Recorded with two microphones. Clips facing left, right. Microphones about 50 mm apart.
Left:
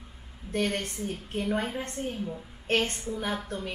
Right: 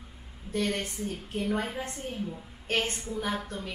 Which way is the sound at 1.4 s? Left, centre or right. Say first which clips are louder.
Left 1 dB; centre.